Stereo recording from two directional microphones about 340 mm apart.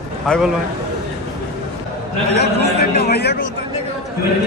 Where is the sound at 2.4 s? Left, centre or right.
Left.